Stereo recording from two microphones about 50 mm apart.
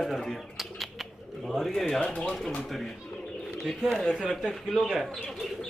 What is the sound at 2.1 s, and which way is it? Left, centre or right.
Speech, left.